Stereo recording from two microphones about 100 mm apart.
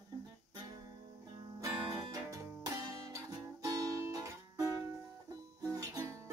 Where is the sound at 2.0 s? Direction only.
35° right (ahead or behind).